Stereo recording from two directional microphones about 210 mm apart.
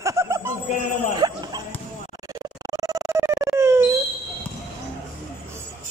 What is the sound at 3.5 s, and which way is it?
Wail, 15° right (ahead or behind).